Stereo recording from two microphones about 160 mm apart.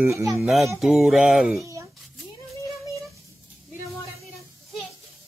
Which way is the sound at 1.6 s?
20° right (ahead or behind).